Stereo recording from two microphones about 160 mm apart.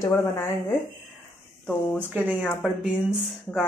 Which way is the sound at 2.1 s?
10° right (ahead or behind).